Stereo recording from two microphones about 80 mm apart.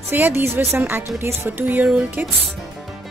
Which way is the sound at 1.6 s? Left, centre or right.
Centre.